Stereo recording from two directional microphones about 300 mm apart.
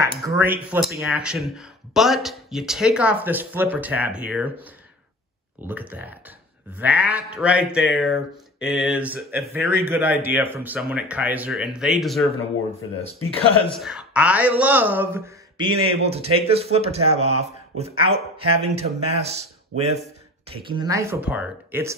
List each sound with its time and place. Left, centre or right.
0.0 s speech: centre
5.6 s speech: centre
13.7 s speech: centre